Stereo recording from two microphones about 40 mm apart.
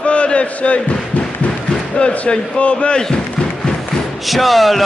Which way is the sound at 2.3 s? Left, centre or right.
Left.